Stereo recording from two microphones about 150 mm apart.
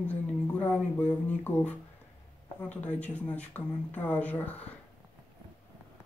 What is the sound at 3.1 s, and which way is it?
Speech, 10° left (ahead or behind).